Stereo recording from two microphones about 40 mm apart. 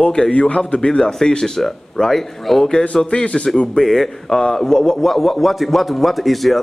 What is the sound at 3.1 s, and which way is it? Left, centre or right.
Speech, left.